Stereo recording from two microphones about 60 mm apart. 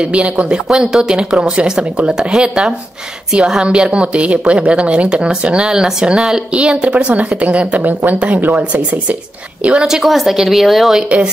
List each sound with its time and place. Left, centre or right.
0.0 s a woman's voice: centre
9.6 s a woman's voice: centre
9.8 s a woman's voice: centre